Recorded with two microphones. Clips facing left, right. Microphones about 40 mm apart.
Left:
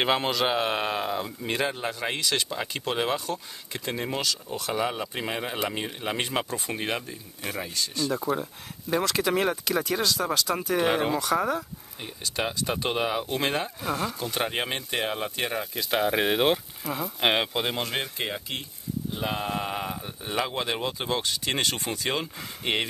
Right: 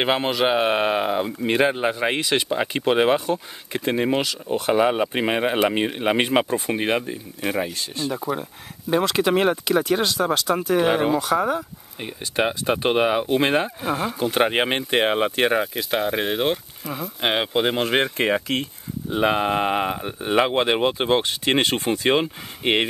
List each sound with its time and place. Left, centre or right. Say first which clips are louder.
0.0 s speech: right 4 dB; centre; by 9.6 s right
9.7 s speech: right 7 dB; centre
10.2 s speech: right 5 dB; centre
12.2 s speech: right 6 dB; right
15.9 s speech: left 1 dB; centre
17.5 s speech: right 7 dB; right
18.1 s speech: right 10 dB; right
19.1 s speech: right 11 dB; right